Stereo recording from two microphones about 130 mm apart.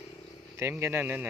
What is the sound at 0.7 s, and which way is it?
Speech, 15° right (ahead or behind).